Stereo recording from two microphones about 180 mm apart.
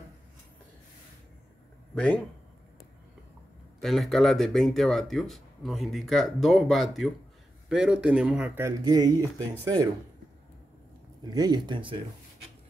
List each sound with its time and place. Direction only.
2.0 s speech: 5° left (ahead or behind)
3.8 s speech: centre (ahead or behind); by 9.8 s 20° right (ahead or behind)
11.2 s speech: 20° right (ahead or behind)